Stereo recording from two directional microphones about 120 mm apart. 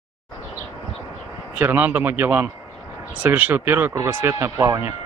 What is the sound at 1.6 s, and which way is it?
A man's voice, 15° right (ahead or behind).